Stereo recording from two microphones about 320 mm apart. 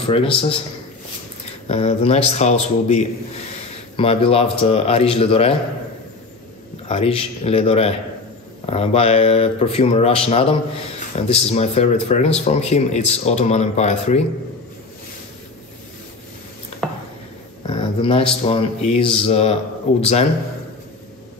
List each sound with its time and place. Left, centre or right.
0.0 s speech: centre
1.7 s speech: centre
6.9 s speech: centre
17.6 s speech: centre